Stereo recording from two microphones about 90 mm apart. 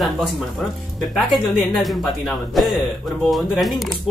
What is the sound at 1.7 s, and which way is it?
Speech, centre (ahead or behind).